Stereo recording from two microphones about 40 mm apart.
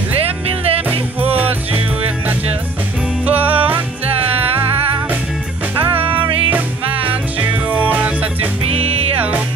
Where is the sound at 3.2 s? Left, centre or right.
Right.